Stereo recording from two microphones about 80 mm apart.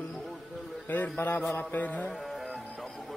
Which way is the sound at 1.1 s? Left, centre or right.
Left.